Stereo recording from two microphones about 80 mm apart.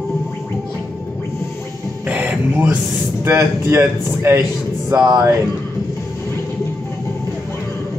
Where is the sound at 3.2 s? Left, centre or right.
Right.